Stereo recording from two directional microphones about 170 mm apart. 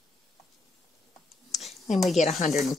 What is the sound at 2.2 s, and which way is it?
Speech, 40° left (ahead or behind).